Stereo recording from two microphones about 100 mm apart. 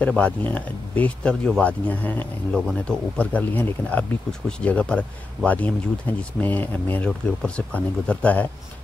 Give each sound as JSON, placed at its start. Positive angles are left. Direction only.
{"t": 0.0, "sound": "speech", "side_deg": 15}